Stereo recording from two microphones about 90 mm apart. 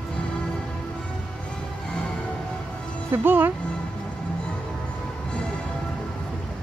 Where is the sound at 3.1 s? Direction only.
25° right (ahead or behind).